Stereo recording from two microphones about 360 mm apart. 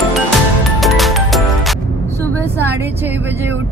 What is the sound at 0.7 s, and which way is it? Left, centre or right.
Music, centre.